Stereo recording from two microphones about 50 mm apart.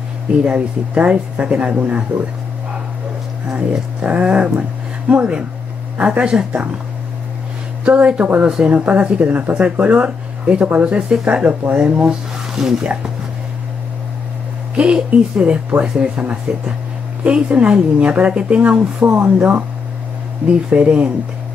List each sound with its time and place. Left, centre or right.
0.5 s speech: right
3.4 s speech: right
5.9 s speech: right
7.8 s speech: right
12.1 s a sound: centre
14.8 s speech: right